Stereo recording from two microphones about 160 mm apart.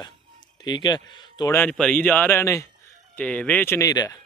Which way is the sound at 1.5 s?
5° left (ahead or behind).